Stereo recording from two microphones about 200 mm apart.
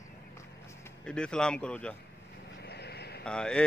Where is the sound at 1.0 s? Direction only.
5° left (ahead or behind).